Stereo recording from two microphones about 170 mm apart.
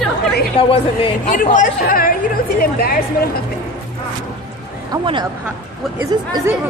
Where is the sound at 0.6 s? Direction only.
35° left (ahead or behind).